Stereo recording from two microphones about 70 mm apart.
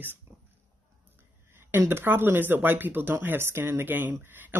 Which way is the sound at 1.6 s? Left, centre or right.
Right.